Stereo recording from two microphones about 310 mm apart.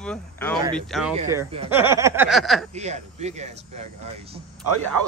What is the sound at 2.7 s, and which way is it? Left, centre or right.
Speech, right.